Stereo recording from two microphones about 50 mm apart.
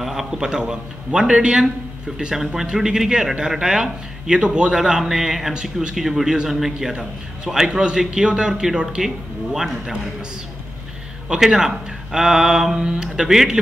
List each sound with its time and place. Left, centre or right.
0.0 s a man's voice: centre
11.2 s a man's voice: centre